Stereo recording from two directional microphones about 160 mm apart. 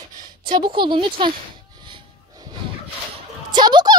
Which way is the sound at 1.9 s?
30° right (ahead or behind).